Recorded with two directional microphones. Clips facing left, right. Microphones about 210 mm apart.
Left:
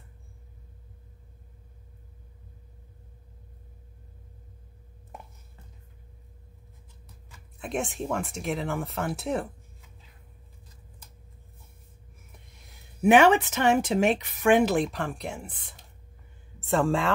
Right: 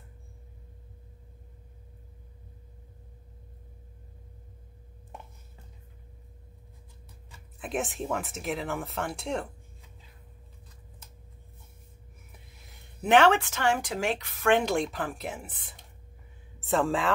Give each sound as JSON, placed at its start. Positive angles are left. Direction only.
{"t": 7.5, "sound": "speech", "side_deg": 0}
{"t": 12.3, "sound": "snort", "side_deg": 0}
{"t": 13.0, "sound": "speech", "side_deg": 10}
{"t": 14.6, "sound": "speech", "side_deg": 0}